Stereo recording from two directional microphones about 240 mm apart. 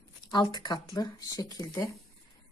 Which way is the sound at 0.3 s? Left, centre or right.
Centre.